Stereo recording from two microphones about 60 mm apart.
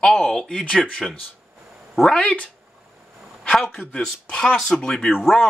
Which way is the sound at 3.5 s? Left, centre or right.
Centre.